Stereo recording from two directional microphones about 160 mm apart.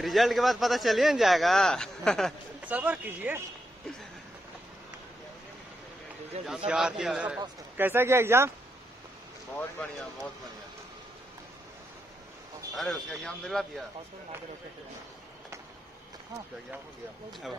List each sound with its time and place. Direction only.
0.0 s speech: centre (ahead or behind)
2.6 s speech: 10° right (ahead or behind)
6.4 s speech: 5° right (ahead or behind)
9.6 s speech: 10° left (ahead or behind)
12.7 s speech: centre (ahead or behind)
17.3 s speech: centre (ahead or behind)